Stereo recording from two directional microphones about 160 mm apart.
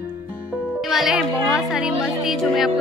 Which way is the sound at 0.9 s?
Centre (ahead or behind).